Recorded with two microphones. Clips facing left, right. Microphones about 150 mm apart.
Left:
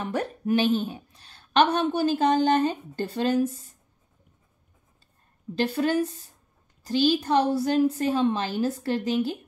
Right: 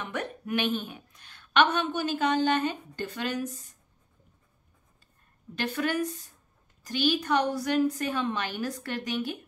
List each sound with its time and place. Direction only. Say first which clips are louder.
0.0 s a woman's voice: left 6 dB; 35° left (ahead or behind)
5.6 s a woman's voice: left 5 dB; 30° left (ahead or behind)